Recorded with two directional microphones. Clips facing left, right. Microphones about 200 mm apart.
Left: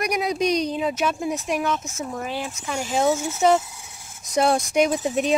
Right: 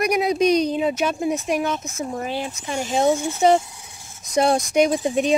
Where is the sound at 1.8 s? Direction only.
15° right (ahead or behind).